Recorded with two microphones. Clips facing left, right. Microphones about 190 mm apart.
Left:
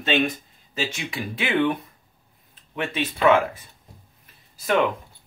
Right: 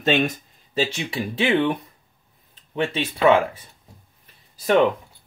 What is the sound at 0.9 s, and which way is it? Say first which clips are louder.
Speech: right 4 dB; 30° right (ahead or behind).